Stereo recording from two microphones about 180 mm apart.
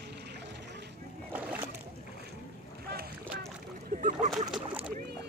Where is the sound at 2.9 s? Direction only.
60° right (ahead or behind).